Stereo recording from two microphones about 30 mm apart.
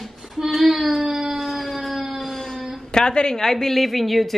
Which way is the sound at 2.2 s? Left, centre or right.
Centre.